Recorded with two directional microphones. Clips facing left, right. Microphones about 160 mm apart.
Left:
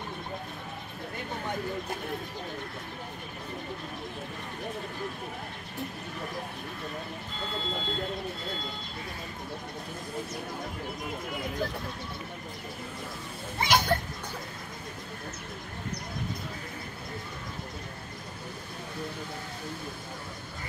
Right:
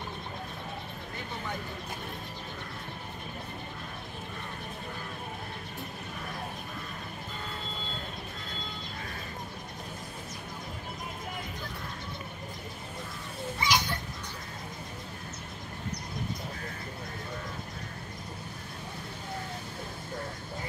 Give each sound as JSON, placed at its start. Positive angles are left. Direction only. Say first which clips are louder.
{"t": 13.6, "sound": "children playing", "louder": "left 5 dB", "side_deg": 55}